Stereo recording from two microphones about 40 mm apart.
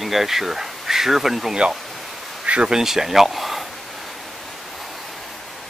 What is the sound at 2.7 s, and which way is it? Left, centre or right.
Speech, centre.